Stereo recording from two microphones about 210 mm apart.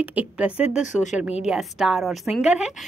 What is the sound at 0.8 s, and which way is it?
Speech, 35° left (ahead or behind).